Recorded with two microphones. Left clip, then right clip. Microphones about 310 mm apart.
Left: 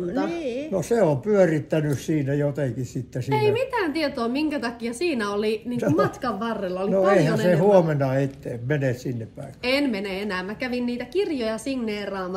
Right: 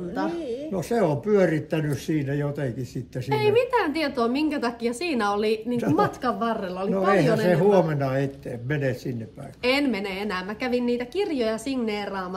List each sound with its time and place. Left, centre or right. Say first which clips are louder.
0.7 s speech: left 3 dB; centre
3.3 s a woman's voice: right 1 dB; centre
7.3 s speech: left 2 dB; centre
9.6 s a woman's voice: even; centre